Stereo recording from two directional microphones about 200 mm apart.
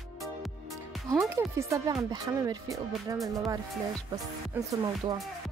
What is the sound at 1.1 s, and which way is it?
Speech, 10° right (ahead or behind).